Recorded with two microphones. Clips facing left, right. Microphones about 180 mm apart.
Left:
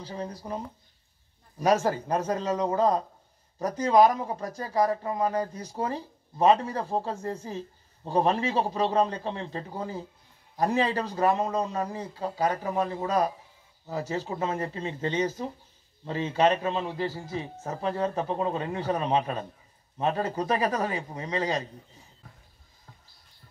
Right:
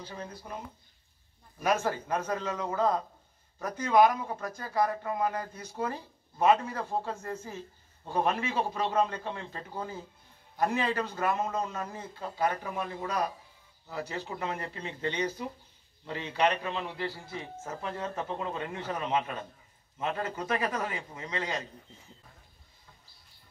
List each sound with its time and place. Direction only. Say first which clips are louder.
0.1 s speech: left 9 dB; 35° left (ahead or behind)
1.6 s a man's voice: left 5 dB; 35° left (ahead or behind)
15.0 s speech: left 4 dB; 40° left (ahead or behind)
16.1 s a man's voice: left 5 dB; 30° left (ahead or behind)